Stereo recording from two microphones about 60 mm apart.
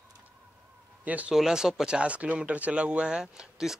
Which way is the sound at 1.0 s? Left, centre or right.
Right.